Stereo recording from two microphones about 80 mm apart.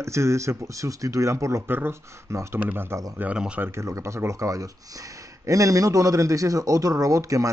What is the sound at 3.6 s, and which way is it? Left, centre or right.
Speech, right.